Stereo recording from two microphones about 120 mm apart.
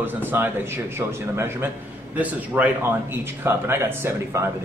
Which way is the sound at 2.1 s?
15° right (ahead or behind).